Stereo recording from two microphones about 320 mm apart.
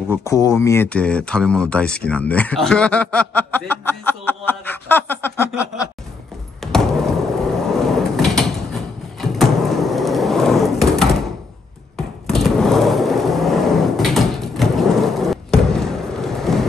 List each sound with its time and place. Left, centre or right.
0.1 s speech: centre
6.6 s a sound: centre
7.5 s mechanisms: centre
12.3 s skateboard: centre